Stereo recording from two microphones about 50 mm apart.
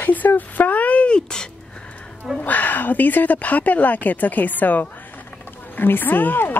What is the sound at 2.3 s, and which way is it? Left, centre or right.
A woman's voice, left.